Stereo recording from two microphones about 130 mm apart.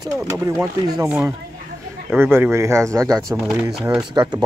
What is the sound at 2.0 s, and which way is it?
Speech, 15° right (ahead or behind).